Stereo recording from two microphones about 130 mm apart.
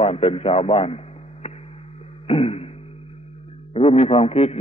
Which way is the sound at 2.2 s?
50° left (ahead or behind).